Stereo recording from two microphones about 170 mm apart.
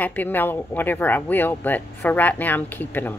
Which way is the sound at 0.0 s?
10° left (ahead or behind).